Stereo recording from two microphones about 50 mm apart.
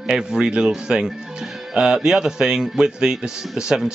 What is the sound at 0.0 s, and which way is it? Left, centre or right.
A man's voice, centre.